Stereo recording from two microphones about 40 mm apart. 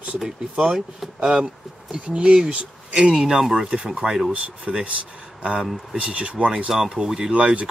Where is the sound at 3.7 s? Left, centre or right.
Right.